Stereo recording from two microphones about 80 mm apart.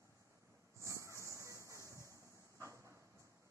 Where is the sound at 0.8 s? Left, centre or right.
Right.